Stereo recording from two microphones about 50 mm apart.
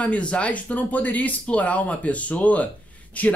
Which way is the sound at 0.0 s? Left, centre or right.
Left.